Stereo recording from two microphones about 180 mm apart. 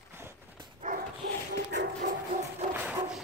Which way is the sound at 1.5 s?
75° right (ahead or behind).